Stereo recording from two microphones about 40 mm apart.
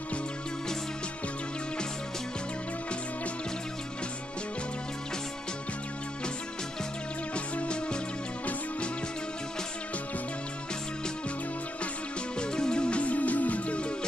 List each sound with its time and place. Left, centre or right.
7.3 s music: left
12.4 s music: centre